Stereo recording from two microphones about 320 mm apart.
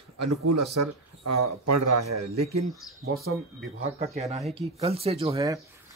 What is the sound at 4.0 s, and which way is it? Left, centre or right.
Speech, centre.